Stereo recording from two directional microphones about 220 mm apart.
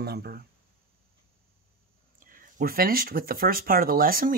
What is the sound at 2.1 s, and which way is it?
Speech, 40° right (ahead or behind).